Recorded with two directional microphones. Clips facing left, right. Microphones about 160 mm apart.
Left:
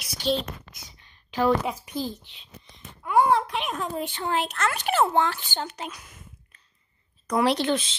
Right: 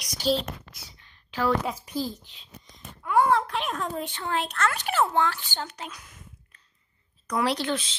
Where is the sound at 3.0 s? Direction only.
15° left (ahead or behind).